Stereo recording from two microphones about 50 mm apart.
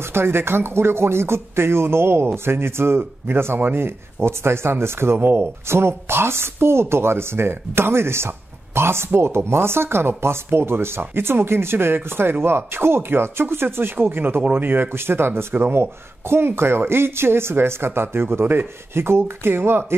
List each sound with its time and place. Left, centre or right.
0.0 s speech: right